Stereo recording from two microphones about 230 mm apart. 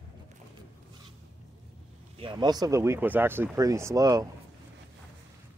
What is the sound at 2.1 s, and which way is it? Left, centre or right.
A man's voice, right.